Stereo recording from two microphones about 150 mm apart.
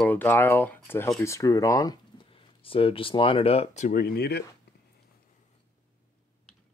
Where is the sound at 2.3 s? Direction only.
35° left (ahead or behind).